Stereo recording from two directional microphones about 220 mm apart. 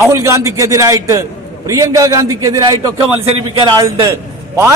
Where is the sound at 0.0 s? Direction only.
10° right (ahead or behind).